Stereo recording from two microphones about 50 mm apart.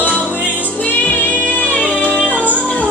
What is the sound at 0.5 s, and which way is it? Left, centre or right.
Music, left.